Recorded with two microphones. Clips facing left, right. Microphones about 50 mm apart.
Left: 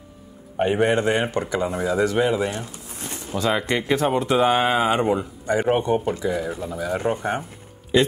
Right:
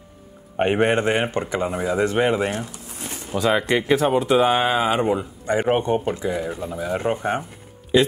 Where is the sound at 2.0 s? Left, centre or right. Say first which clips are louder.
Right 1 dB; right.